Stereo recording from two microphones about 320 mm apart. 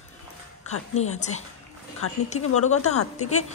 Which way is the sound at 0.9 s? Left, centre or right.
Left.